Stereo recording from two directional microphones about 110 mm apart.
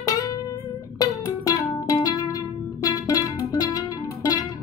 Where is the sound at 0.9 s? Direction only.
35° left (ahead or behind).